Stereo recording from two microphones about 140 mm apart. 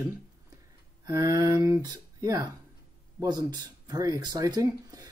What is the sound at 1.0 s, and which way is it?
Speech, 25° right (ahead or behind).